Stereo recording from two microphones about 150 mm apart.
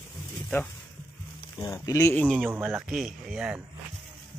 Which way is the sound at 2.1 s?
5° left (ahead or behind).